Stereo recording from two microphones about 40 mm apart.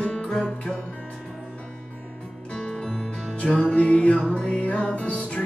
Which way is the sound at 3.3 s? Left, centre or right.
Left.